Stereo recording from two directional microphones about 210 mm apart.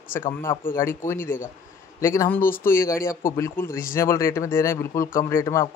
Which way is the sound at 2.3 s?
45° left (ahead or behind).